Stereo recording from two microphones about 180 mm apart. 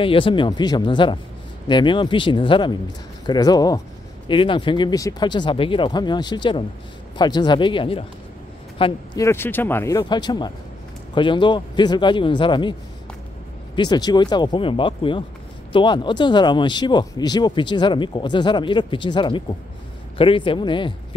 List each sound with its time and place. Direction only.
0.0 s speech: 30° left (ahead or behind)
9.2 s speech: 15° left (ahead or behind)
13.7 s speech: 25° left (ahead or behind)